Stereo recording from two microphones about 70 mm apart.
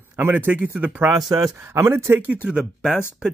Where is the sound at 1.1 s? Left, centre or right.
Right.